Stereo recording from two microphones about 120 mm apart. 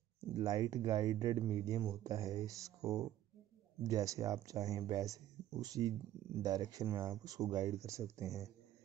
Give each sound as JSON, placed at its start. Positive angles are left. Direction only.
{"t": 0.3, "sound": "speech", "side_deg": -30}